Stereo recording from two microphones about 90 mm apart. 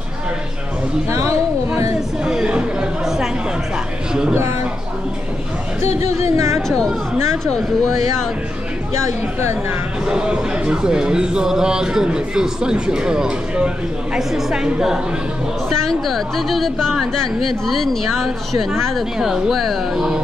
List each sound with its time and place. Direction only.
2.2 s chatter: 5° right (ahead or behind)
4.1 s speech: 10° right (ahead or behind)
6.3 s speech: 35° right (ahead or behind)
10.0 s a woman's voice: 10° right (ahead or behind)